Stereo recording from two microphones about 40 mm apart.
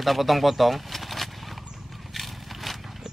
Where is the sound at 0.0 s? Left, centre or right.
Centre.